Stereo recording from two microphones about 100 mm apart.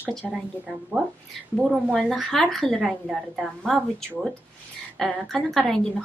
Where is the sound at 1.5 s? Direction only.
Centre (ahead or behind).